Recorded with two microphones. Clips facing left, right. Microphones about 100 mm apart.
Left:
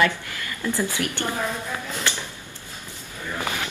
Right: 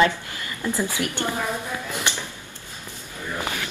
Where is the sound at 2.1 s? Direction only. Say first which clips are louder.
Left 1 dB; 20° right (ahead or behind).